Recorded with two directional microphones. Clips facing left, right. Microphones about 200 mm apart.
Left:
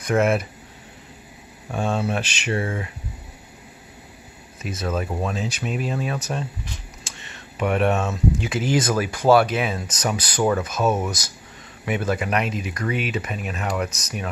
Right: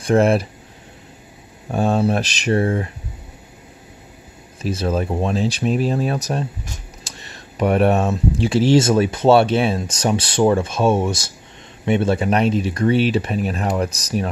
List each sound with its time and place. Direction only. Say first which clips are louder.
0.0 s speech: right 5 dB; 30° right (ahead or behind)
1.7 s speech: right 6 dB; 35° right (ahead or behind)
4.6 s speech: right 5 dB; 30° right (ahead or behind)